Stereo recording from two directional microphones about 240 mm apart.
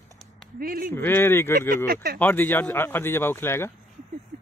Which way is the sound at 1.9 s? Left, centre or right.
Right.